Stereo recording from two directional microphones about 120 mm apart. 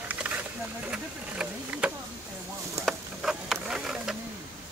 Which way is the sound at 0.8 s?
10° right (ahead or behind).